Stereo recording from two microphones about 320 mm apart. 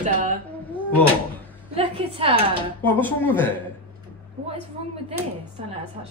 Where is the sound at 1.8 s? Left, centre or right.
Centre.